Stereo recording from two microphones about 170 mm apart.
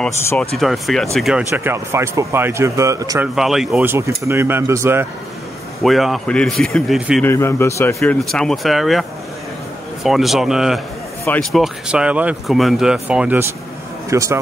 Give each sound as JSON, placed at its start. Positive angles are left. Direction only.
{"t": 0.2, "sound": "speech", "side_deg": 15}
{"t": 0.6, "sound": "speech", "side_deg": 0}
{"t": 1.5, "sound": "speech", "side_deg": -15}
{"t": 3.3, "sound": "speech", "side_deg": 0}
{"t": 3.8, "sound": "speech", "side_deg": -15}
{"t": 5.8, "sound": "speech", "side_deg": 0}
{"t": 7.2, "sound": "speech", "side_deg": 15}
{"t": 8.2, "sound": "speech", "side_deg": 5}
{"t": 10.0, "sound": "speech", "side_deg": 0}
{"t": 11.2, "sound": "speech", "side_deg": 10}
{"t": 11.6, "sound": "speech", "side_deg": -5}
{"t": 14.1, "sound": "speech", "side_deg": -20}